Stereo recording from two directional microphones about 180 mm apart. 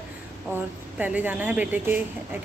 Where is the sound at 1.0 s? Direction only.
10° right (ahead or behind).